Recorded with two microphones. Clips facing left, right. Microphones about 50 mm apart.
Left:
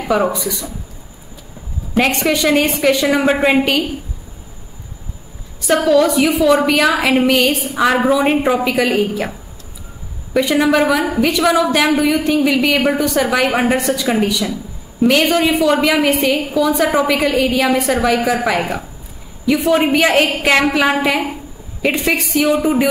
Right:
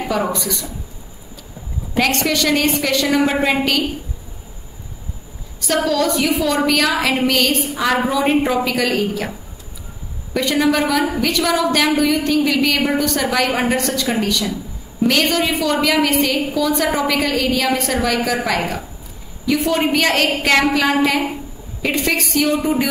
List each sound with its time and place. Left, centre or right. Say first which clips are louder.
0.1 s a woman's voice: left 6 dB; centre
2.0 s a woman's voice: left 2 dB; left
5.7 s a woman's voice: left 5 dB; centre
10.3 s a woman's voice: left 3 dB; centre